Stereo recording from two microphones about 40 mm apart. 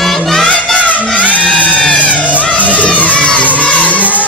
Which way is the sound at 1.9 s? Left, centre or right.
Left.